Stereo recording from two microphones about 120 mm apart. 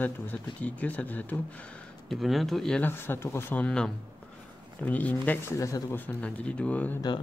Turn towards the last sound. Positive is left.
turn(degrees=15)  # may be behind; listen again after turning